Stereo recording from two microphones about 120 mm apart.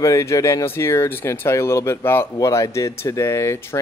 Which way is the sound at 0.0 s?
25° left (ahead or behind).